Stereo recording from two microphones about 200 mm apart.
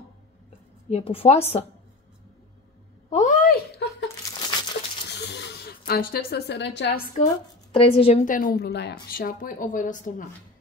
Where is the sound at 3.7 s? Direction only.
55° left (ahead or behind).